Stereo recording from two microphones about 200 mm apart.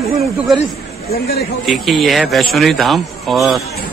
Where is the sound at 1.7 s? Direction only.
Centre (ahead or behind).